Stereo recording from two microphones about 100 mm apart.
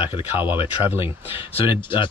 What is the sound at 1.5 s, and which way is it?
Speech, 55° left (ahead or behind).